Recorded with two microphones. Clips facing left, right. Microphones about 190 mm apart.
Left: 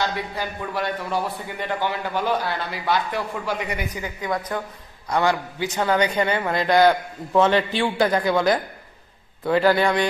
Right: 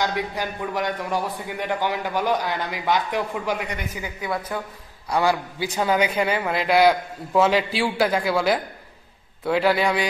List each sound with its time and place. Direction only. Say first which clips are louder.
0.0 s a man's voice: right 1 dB; 15° right (ahead or behind)